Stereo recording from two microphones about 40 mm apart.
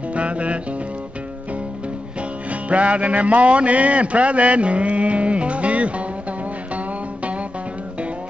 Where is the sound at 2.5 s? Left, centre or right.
Right.